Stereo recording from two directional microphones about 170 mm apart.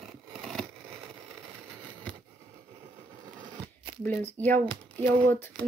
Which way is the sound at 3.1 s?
25° right (ahead or behind).